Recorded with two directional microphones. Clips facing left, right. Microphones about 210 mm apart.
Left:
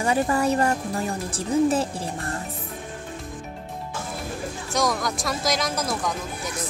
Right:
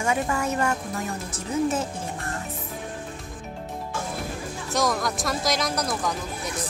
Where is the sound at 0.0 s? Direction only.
35° left (ahead or behind).